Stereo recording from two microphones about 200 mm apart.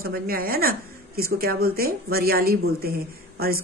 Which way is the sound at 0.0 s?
45° right (ahead or behind).